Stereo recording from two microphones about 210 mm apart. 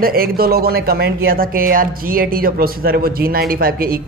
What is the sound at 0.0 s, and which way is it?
Speech, 45° right (ahead or behind).